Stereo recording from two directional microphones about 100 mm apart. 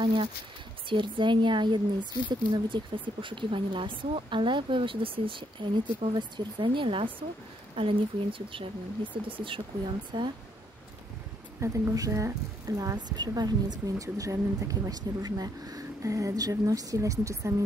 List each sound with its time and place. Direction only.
0.0 s speech: 55° right (ahead or behind)
10.1 s speech: 50° right (ahead or behind)
11.6 s speech: 35° right (ahead or behind)